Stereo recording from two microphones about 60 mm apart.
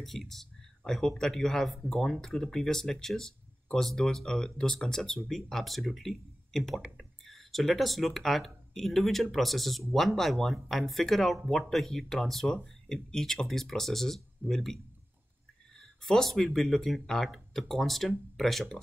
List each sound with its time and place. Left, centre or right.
0.0 s speech: centre
15.8 s speech: centre